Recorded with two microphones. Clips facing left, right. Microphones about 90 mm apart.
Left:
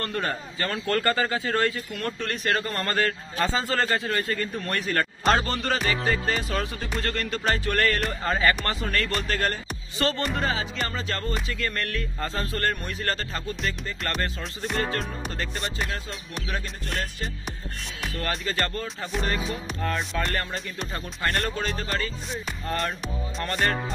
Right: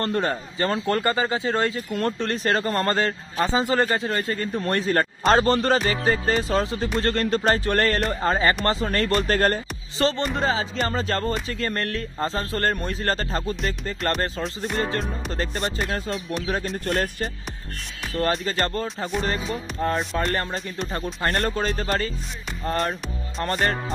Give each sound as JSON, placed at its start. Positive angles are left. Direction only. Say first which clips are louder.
{"t": 0.0, "sound": "a man's voice", "louder": "right 5 dB", "side_deg": -30}
{"t": 1.9, "sound": "a man's voice", "louder": "right 6 dB", "side_deg": -40}
{"t": 9.9, "sound": "a man's voice", "louder": "right 3 dB", "side_deg": -25}
{"t": 15.3, "sound": "speech", "louder": "right 6 dB", "side_deg": -40}
{"t": 18.1, "sound": "speech", "louder": "right 6 dB", "side_deg": -35}
{"t": 20.1, "sound": "speech", "louder": "right 3 dB", "side_deg": -35}